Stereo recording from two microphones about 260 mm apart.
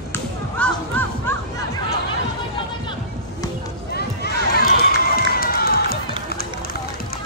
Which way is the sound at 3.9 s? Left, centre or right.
Left.